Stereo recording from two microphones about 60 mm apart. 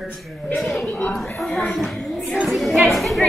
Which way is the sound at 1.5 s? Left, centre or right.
Centre.